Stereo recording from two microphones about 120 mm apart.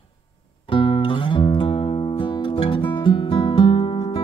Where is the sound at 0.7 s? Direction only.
45° left (ahead or behind).